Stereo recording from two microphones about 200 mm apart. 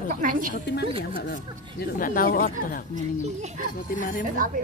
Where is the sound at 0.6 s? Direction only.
60° left (ahead or behind).